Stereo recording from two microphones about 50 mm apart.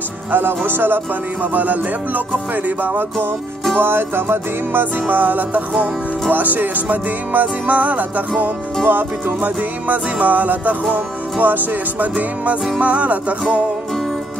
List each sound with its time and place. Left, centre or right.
0.3 s music: right
5.0 s music: right